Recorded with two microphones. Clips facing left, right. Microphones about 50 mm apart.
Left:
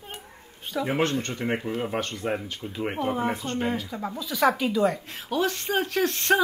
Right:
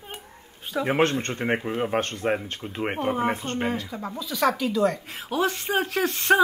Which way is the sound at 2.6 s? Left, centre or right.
Right.